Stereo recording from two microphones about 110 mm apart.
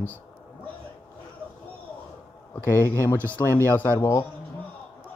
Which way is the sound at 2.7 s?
25° left (ahead or behind).